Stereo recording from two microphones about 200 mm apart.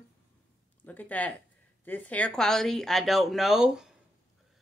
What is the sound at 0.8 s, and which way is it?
Speech, 10° left (ahead or behind).